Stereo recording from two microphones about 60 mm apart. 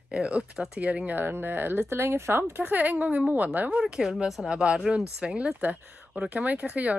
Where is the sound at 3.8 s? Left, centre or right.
Centre.